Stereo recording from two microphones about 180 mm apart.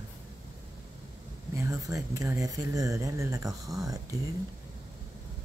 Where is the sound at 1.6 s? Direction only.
15° right (ahead or behind).